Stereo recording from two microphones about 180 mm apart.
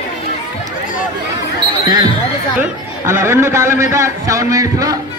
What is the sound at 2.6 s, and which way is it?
A man's voice, 15° right (ahead or behind).